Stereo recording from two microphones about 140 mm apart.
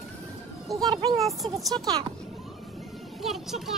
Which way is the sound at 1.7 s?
30° right (ahead or behind).